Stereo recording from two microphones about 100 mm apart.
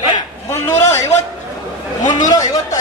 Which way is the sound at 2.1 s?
40° left (ahead or behind).